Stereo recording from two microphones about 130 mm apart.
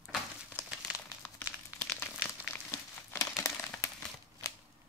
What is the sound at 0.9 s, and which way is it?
Crumpling, 10° right (ahead or behind).